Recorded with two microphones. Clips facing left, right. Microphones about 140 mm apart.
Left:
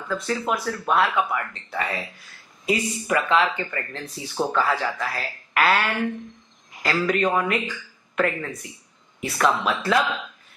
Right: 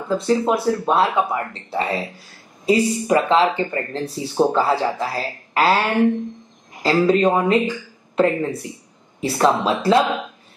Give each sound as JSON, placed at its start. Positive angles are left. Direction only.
{"t": 0.0, "sound": "speech", "side_deg": -30}